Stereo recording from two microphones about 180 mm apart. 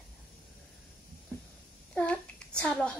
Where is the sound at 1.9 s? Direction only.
5° left (ahead or behind).